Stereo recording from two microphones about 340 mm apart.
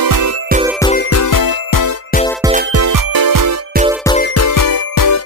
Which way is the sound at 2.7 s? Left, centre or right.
Right.